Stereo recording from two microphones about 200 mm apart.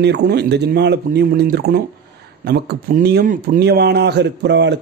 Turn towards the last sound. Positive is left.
turn(degrees=-60)  # may be behind; listen again after turning